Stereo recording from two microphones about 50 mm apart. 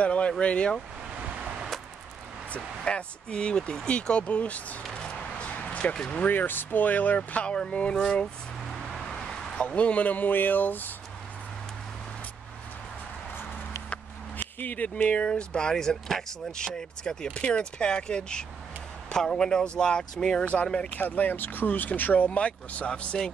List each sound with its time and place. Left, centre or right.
0.0 s vehicle: left
0.4 s speech: left
2.5 s speech: left
4.9 s a sound: left
6.0 s speech: left
7.2 s speech: left
8.0 s a sound: centre
9.7 s speech: left
13.8 s chop: left
15.0 s speech: left
15.7 s speech: centre
21.0 s speech: left